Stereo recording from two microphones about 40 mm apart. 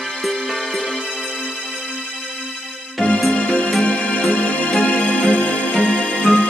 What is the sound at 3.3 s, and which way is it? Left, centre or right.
Music, left.